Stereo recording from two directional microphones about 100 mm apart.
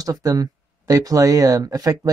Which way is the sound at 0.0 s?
35° right (ahead or behind).